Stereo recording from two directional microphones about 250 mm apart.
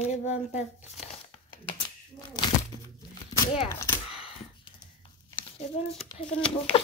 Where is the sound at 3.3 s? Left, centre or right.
Centre.